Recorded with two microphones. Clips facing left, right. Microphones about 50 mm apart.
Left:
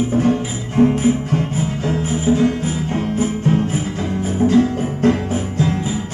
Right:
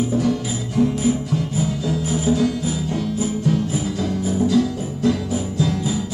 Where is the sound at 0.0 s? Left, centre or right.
Left.